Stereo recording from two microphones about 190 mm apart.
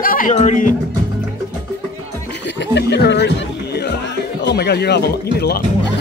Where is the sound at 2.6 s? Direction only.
65° left (ahead or behind).